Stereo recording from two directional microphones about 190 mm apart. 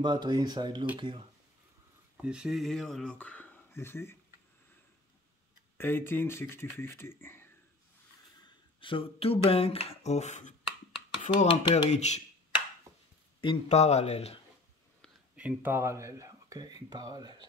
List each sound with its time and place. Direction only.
0.0 s speech: 20° right (ahead or behind)
2.2 s speech: 5° right (ahead or behind); by 4.2 s 10° left (ahead or behind)
5.8 s speech: 10° left (ahead or behind)
8.4 s speech: 25° left (ahead or behind)
13.4 s speech: 30° left (ahead or behind)
15.0 s speech: 5° right (ahead or behind); by 17.5 s 20° right (ahead or behind)